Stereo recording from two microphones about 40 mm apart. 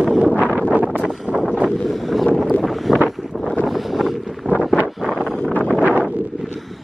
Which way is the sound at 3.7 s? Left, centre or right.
Centre.